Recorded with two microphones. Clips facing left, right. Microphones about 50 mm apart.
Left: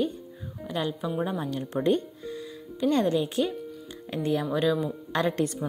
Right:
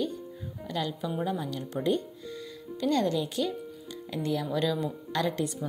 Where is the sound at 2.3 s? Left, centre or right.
Left.